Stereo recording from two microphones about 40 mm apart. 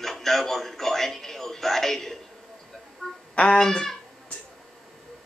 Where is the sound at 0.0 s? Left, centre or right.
Centre.